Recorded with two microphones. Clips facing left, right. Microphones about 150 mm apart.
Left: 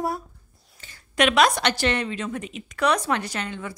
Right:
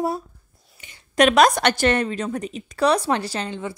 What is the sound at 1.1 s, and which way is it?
A woman's voice, 40° right (ahead or behind).